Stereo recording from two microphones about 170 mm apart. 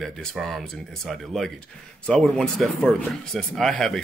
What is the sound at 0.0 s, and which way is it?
Speech, centre (ahead or behind).